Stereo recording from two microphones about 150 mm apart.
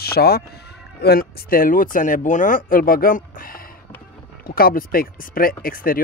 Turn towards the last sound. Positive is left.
turn(degrees=75)  # may be behind; listen again after turning